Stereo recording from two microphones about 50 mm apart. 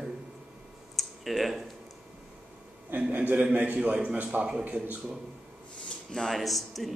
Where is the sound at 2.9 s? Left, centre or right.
Right.